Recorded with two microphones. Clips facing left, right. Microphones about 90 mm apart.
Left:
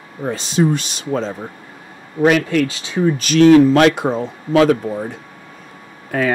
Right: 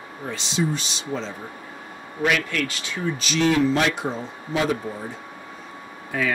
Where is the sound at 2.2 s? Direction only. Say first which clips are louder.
Left 9 dB; 35° left (ahead or behind).